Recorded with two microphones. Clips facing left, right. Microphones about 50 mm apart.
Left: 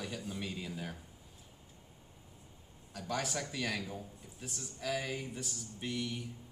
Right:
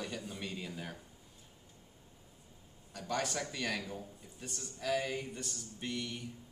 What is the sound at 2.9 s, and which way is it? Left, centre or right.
A man's voice, centre.